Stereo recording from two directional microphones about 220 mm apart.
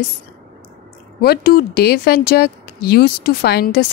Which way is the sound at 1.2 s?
45° left (ahead or behind).